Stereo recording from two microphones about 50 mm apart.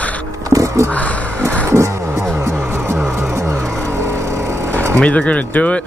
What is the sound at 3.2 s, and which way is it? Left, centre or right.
Vehicle, right.